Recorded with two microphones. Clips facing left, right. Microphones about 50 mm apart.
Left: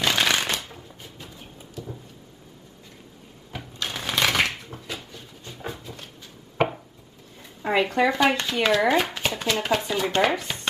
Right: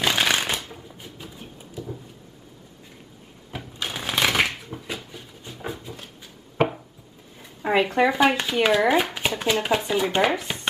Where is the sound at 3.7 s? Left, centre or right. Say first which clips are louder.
Even; centre.